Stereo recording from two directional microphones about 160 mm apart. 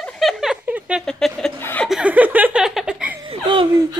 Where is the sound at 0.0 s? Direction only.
Centre (ahead or behind).